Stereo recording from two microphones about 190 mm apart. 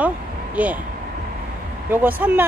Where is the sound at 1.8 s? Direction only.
10° right (ahead or behind).